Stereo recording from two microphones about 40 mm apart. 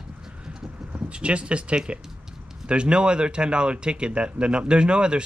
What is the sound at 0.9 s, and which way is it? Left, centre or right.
Speech, right.